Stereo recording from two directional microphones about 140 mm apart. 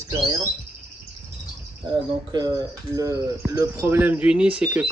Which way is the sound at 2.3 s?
30° right (ahead or behind).